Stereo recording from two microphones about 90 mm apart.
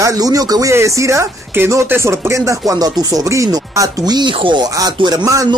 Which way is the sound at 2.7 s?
50° right (ahead or behind).